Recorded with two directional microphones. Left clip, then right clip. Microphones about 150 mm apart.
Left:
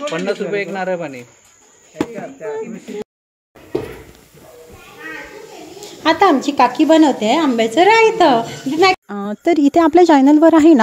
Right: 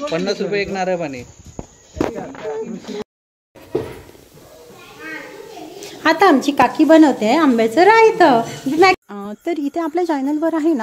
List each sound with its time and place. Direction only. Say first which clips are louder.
0.1 s speech: right 2 dB; 90° right
6.0 s a woman's voice: even; 5° right (ahead or behind)
9.0 s speech: left 7 dB; 30° left (ahead or behind); by 10.8 s 55° left (ahead or behind)